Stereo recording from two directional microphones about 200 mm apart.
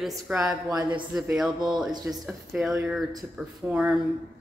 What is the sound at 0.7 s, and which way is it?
Speech, 20° right (ahead or behind).